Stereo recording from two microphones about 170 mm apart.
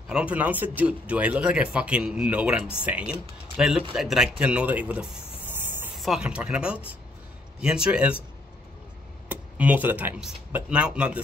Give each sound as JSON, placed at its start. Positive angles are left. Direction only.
{"t": 0.1, "sound": "speech", "side_deg": -10}
{"t": 9.3, "sound": "speech", "side_deg": -10}